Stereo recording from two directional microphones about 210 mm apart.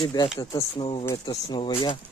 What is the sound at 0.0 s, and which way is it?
Speech, 20° left (ahead or behind).